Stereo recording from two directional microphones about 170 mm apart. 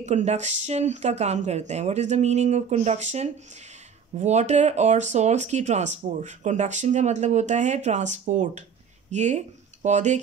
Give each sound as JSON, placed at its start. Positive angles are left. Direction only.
{"t": 0.0, "sound": "speech", "side_deg": -40}